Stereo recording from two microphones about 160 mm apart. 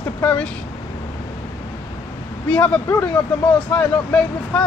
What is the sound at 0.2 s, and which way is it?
Speech, 10° left (ahead or behind).